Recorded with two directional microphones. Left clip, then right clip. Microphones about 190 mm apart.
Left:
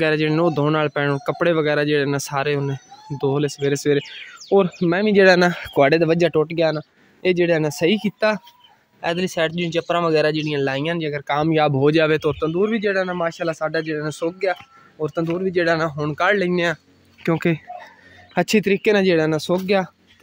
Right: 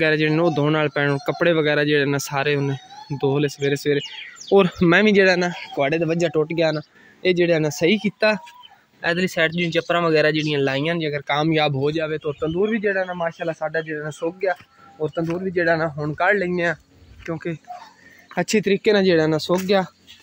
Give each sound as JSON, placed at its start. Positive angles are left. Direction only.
{"t": 0.0, "sound": "speech", "side_deg": 5}
{"t": 4.6, "sound": "speech", "side_deg": -10}
{"t": 5.2, "sound": "speech", "side_deg": 25}
{"t": 11.5, "sound": "speech", "side_deg": 20}
{"t": 11.9, "sound": "speech", "side_deg": 55}
{"t": 12.4, "sound": "speech", "side_deg": 15}
{"t": 17.3, "sound": "speech", "side_deg": 55}
{"t": 18.3, "sound": "speech", "side_deg": 20}